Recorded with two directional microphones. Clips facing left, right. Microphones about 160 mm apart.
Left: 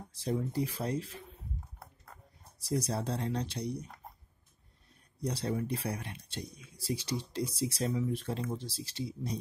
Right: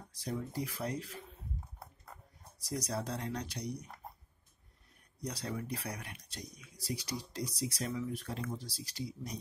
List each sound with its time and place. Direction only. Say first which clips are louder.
0.1 s speech: left 6 dB; 25° left (ahead or behind)
2.6 s speech: left 4 dB; 30° left (ahead or behind)
5.2 s speech: left 6 dB; 30° left (ahead or behind)